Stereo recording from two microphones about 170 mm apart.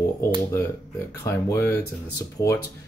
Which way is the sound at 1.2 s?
15° left (ahead or behind).